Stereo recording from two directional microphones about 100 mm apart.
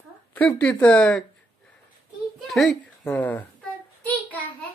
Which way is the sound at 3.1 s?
15° left (ahead or behind).